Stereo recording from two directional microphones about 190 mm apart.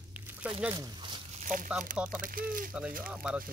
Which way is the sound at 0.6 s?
15° right (ahead or behind).